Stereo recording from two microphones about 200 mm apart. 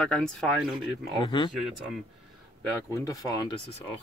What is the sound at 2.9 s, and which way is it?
Speech, 15° left (ahead or behind).